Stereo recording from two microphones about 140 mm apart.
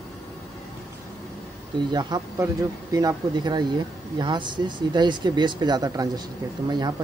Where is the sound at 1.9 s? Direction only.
30° right (ahead or behind).